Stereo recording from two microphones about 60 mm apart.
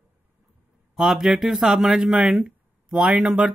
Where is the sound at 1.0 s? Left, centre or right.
Centre.